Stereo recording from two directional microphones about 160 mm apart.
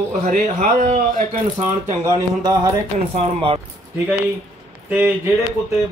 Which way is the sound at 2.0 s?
20° right (ahead or behind).